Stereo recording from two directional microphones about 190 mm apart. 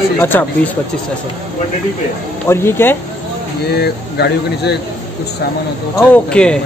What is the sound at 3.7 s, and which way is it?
Speech, 60° left (ahead or behind).